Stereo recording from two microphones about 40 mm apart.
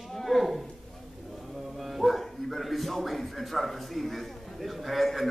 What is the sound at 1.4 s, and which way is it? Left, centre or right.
Bow-wow, centre.